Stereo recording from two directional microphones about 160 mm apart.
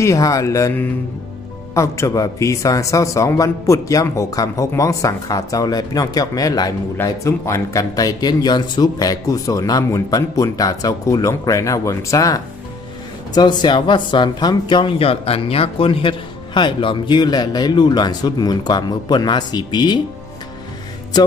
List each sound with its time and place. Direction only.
0.0 s speech: 20° left (ahead or behind)